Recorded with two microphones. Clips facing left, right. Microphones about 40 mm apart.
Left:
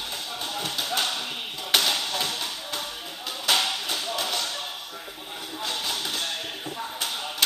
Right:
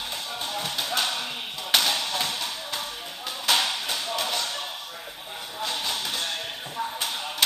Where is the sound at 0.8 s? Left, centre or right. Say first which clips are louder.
Even; right.